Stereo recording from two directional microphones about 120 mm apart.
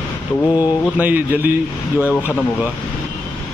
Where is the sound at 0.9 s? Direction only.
15° right (ahead or behind).